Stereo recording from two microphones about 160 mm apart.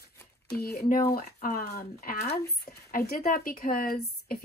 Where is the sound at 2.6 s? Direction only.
75° left (ahead or behind).